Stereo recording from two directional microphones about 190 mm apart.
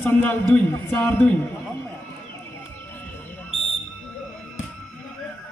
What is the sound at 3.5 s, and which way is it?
Smoke detector, 30° left (ahead or behind).